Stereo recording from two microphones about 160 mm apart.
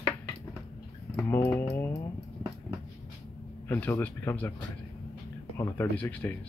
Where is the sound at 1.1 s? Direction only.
10° left (ahead or behind).